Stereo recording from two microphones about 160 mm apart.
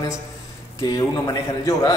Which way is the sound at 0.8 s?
25° left (ahead or behind).